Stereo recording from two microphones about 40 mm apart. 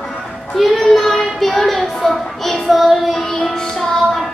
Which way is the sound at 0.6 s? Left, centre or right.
Centre.